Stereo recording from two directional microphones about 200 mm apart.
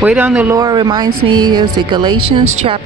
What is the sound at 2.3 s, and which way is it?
Speech, 30° right (ahead or behind).